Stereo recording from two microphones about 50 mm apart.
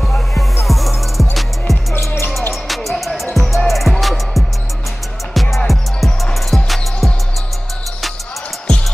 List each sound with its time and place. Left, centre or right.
0.7 s music: centre
2.0 s music: left
2.5 s music: centre